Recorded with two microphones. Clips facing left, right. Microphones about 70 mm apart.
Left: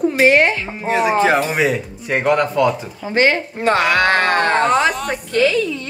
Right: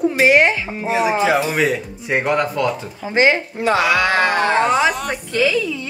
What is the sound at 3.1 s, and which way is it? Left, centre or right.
Speech, centre.